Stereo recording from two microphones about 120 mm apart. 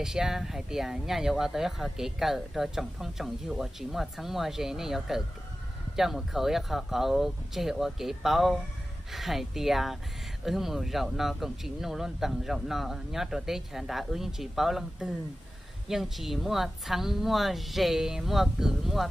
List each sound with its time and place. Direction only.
0.0 s speech: 5° right (ahead or behind)